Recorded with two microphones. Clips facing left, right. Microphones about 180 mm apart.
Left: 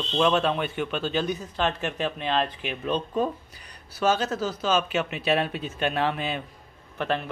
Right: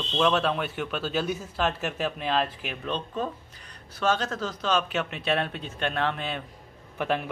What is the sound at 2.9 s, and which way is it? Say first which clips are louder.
A man's voice: left 6 dB; 15° left (ahead or behind).